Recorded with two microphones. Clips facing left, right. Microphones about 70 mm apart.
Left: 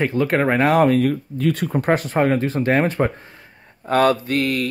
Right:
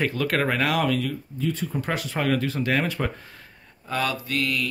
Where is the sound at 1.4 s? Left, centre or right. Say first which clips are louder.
Left 6 dB; left.